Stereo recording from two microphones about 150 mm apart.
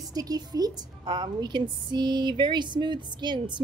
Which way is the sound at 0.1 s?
25° right (ahead or behind).